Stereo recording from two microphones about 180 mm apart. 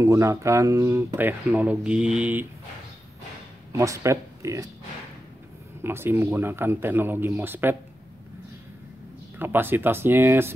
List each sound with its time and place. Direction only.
0.0 s speech: 15° right (ahead or behind)
3.7 s speech: 15° right (ahead or behind)
5.9 s speech: 10° right (ahead or behind)
9.4 s speech: 10° right (ahead or behind)